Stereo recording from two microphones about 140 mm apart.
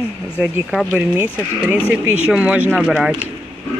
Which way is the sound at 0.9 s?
10° right (ahead or behind).